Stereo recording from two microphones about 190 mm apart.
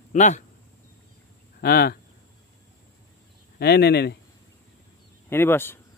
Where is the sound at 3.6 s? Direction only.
60° left (ahead or behind).